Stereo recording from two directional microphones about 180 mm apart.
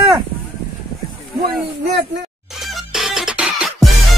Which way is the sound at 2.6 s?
Centre (ahead or behind).